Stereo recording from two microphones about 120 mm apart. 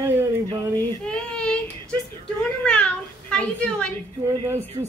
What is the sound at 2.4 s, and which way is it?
A child's voice, 10° left (ahead or behind).